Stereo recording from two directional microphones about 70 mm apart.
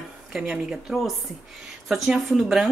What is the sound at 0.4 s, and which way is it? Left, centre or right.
Speech, centre.